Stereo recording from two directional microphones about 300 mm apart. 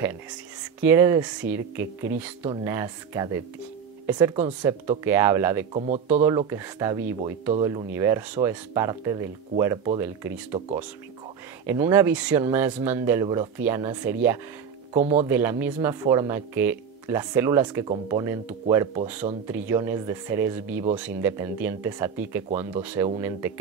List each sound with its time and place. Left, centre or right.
0.7 s speech: centre
11.6 s speech: centre
15.0 s speech: right
15.2 s speech: centre